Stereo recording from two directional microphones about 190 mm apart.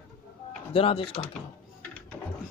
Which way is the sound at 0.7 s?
30° left (ahead or behind).